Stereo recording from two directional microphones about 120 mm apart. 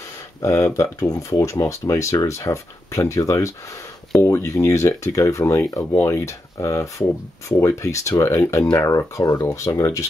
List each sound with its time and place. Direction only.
0.4 s speech: 25° left (ahead or behind)